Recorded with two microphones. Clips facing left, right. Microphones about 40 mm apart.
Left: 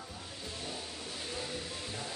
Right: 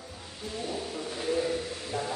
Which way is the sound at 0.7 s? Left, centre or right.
Right.